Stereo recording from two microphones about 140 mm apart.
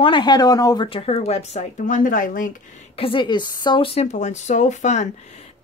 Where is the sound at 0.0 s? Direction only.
35° left (ahead or behind).